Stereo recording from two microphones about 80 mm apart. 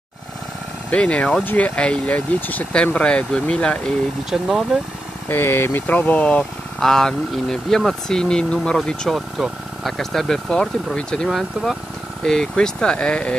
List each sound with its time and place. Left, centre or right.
0.8 s speech: centre
4.3 s speech: centre
5.3 s speech: left
6.8 s speech: centre